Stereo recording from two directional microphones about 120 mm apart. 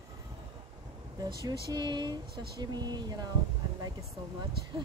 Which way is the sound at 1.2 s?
35° right (ahead or behind).